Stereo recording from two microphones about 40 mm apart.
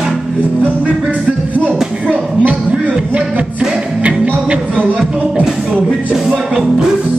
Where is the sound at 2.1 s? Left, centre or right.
Right.